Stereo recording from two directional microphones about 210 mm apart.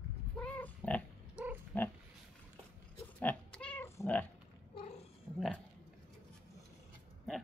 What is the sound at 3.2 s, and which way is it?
Cat, 5° left (ahead or behind).